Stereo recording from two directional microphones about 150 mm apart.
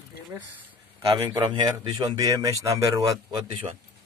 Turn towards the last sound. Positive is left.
turn(degrees=-25)  # may be behind; listen again after turning